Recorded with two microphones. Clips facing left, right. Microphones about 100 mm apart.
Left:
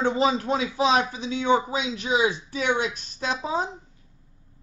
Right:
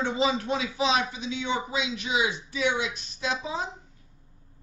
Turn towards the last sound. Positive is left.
turn(degrees=40)  # may be behind; listen again after turning